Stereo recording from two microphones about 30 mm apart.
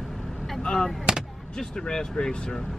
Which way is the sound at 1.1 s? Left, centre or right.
Right.